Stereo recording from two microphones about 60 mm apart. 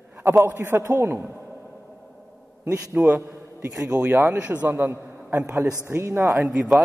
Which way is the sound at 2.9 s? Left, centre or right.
Right.